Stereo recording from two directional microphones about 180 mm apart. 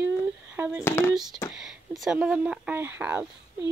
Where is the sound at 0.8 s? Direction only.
15° left (ahead or behind).